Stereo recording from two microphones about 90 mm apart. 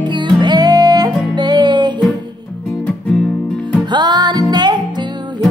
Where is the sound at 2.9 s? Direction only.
5° left (ahead or behind).